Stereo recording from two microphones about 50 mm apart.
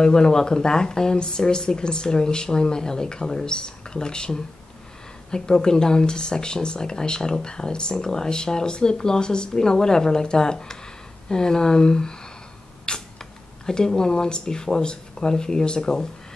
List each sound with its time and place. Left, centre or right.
0.0 s speech: centre